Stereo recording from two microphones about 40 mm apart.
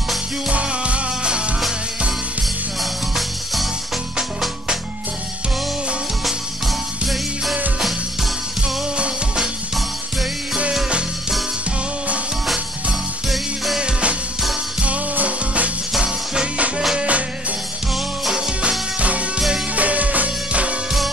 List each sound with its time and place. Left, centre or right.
0.5 s music: right
2.8 s music: centre
8.9 s music: right
13.7 s music: right
15.1 s music: right
18.9 s music: right